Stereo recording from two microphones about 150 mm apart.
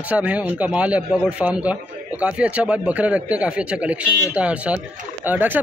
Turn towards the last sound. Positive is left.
turn(degrees=-10)  # may be behind; listen again after turning